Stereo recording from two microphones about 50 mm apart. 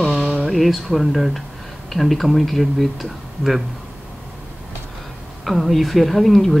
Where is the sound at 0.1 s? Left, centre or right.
Centre.